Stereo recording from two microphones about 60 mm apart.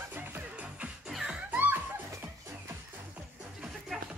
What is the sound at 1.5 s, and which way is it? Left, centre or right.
Music, right.